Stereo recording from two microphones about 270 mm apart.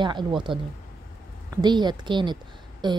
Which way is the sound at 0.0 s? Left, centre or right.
Centre.